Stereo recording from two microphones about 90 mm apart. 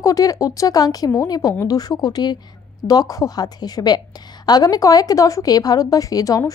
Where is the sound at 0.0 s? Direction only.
40° left (ahead or behind).